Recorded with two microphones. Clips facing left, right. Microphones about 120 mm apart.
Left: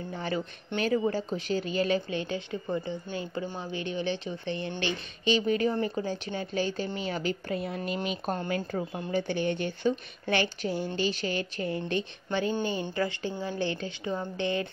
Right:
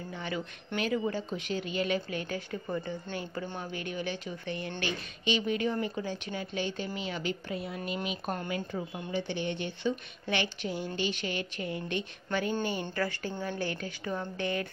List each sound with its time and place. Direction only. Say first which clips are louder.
0.1 s a sound: left 4 dB; 35° left (ahead or behind)
0.7 s speech: left 4 dB; 35° left (ahead or behind)
2.0 s a woman's voice: left 3 dB; 25° left (ahead or behind)
13.6 s a woman's voice: left 3 dB; 25° left (ahead or behind)